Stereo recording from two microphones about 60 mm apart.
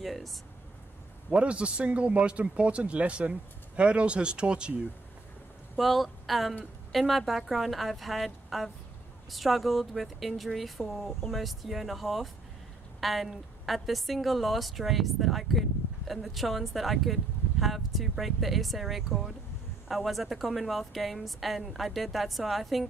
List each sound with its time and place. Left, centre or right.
0.0 s speech: centre
1.3 s a man's voice: centre
5.8 s a woman's voice: centre